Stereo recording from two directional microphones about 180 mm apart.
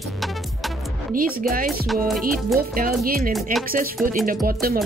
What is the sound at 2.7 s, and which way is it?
Speech, 55° right (ahead or behind).